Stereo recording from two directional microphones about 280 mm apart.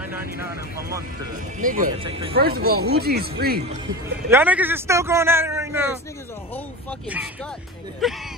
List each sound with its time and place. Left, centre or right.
1.6 s speech: right
2.0 s speech: centre
2.3 s speech: right
4.3 s a man's voice: centre
8.0 s speech: centre